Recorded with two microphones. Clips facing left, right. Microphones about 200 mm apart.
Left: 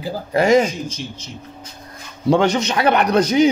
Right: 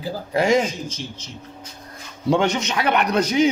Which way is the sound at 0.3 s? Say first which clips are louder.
Left 4 dB; 50° left (ahead or behind).